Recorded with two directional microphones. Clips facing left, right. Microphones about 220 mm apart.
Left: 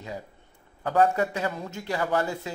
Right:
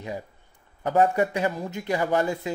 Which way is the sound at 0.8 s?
15° right (ahead or behind).